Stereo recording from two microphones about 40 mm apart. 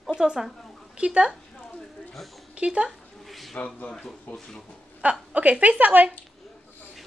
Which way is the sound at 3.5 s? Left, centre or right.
Left.